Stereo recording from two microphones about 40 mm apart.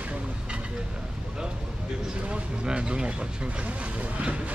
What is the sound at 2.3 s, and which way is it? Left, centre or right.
Speech, right.